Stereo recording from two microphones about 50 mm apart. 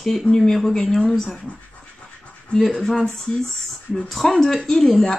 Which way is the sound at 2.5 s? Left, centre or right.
Centre.